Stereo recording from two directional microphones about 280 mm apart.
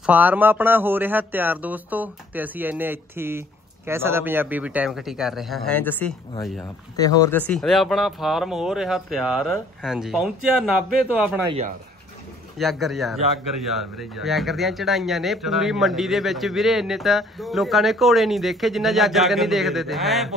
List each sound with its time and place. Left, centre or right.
0.0 s a man's voice: centre
11.4 s speech: right
12.5 s a man's voice: centre